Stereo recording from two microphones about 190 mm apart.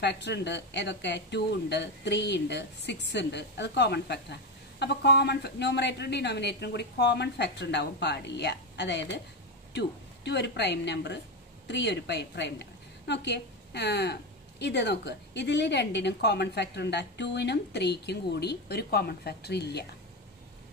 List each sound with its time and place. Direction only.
0.0 s a woman's voice: 65° left (ahead or behind)